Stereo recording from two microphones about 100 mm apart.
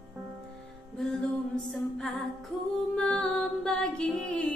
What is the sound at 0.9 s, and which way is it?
Music, 5° left (ahead or behind).